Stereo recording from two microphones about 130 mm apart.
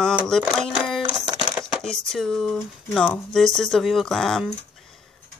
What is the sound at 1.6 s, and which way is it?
A woman's voice, 5° left (ahead or behind).